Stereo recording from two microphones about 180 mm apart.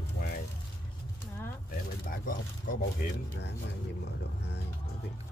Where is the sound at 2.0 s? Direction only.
50° left (ahead or behind).